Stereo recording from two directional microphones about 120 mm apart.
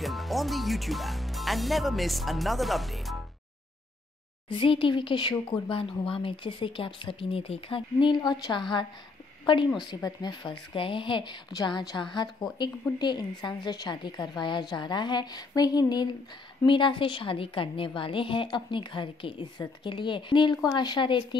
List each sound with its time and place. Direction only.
0.0 s speech: centre (ahead or behind)
4.5 s a woman's voice: 45° left (ahead or behind)
5.7 s a woman's voice: 45° left (ahead or behind)